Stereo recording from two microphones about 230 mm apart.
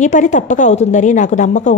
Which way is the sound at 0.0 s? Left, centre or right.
Left.